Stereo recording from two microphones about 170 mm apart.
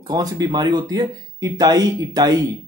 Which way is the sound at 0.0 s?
25° right (ahead or behind).